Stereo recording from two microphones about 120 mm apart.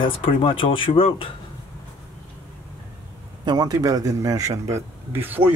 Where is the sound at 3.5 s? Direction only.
35° right (ahead or behind).